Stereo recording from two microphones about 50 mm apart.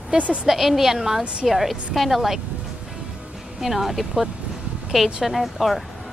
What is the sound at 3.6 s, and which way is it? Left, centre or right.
A woman's voice, centre.